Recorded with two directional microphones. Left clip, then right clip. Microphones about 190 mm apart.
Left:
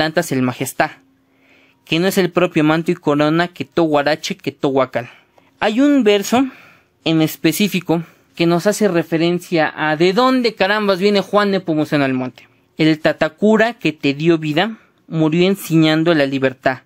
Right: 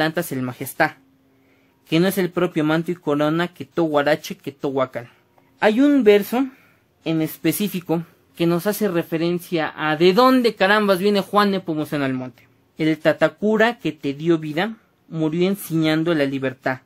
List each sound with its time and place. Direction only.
0.0 s speech: 40° left (ahead or behind)